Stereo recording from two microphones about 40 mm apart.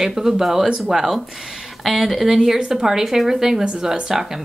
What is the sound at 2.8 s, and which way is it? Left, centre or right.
Speech, centre.